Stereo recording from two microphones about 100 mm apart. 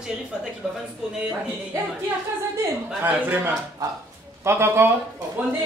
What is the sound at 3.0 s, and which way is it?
A man's voice, 20° right (ahead or behind).